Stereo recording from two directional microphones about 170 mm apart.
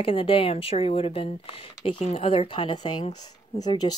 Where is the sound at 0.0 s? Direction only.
35° left (ahead or behind).